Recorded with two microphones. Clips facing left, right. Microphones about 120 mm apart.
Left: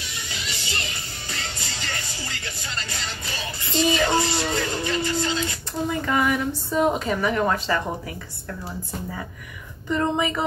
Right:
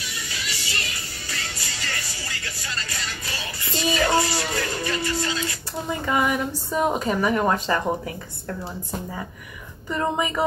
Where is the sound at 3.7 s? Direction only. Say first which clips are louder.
Left 1 dB; 25° left (ahead or behind).